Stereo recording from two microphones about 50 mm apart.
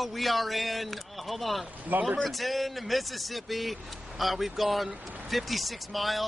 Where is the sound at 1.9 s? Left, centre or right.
Right.